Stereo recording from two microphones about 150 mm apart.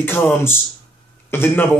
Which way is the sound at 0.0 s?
15° left (ahead or behind).